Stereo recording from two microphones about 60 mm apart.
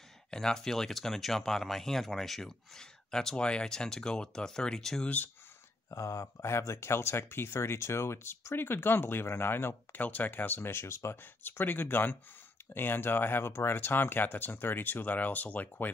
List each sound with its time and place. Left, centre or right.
0.3 s speech: centre
5.0 s speech: left
5.9 s speech: left
11.4 s speech: left